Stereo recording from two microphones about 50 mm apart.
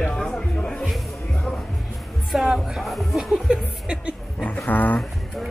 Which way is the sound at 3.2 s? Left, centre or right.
Centre.